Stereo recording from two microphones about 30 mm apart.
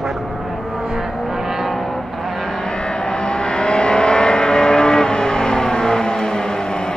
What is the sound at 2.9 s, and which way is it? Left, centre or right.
Vehicle, left.